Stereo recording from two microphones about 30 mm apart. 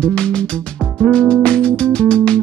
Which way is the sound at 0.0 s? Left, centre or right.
Left.